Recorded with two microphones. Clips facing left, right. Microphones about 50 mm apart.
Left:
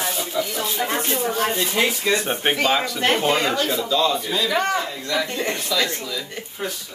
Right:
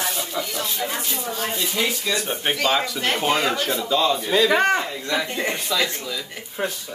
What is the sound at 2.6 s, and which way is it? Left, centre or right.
Speech, centre.